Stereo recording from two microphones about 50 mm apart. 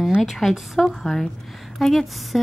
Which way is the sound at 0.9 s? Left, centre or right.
Centre.